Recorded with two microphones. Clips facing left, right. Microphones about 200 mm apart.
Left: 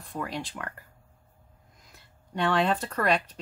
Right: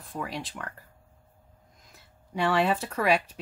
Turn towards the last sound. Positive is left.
turn(degrees=-5)  # may be behind; listen again after turning